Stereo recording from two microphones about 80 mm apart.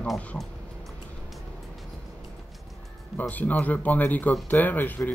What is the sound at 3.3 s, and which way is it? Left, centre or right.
Speech, left.